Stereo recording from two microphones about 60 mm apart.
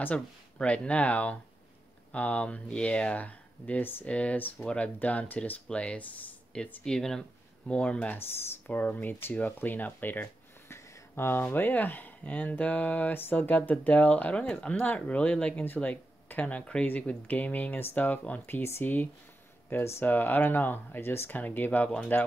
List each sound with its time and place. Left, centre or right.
0.6 s speech: left
6.8 s speech: centre; by 10.3 s left
10.7 s a sound: left
11.5 s speech: left
21.4 s speech: left